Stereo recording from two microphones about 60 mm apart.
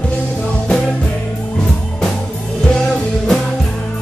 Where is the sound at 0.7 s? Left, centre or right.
Centre.